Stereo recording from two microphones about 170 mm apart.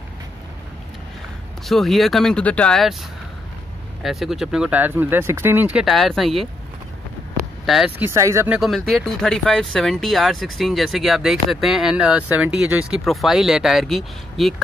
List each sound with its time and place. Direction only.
1.7 s speech: centre (ahead or behind)
4.0 s speech: centre (ahead or behind)
7.6 s speech: centre (ahead or behind)
8.0 s speech: 15° right (ahead or behind)
8.5 s speech: centre (ahead or behind)